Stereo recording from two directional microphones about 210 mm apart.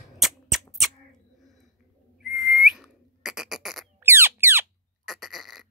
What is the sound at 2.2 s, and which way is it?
Whistle, centre (ahead or behind).